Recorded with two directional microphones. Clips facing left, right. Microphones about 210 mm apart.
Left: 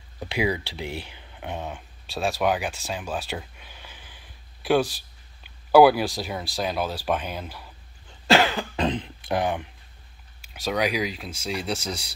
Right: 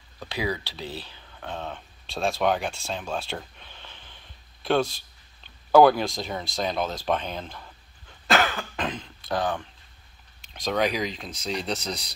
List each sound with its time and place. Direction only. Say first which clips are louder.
0.2 s speech: left 4 dB; 20° left (ahead or behind)
8.3 s cough: left 4 dB; 30° left (ahead or behind)
9.3 s speech: left 2 dB; 15° left (ahead or behind)